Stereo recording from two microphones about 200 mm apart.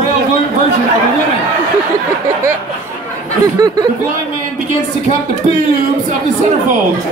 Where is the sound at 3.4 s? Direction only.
20° right (ahead or behind).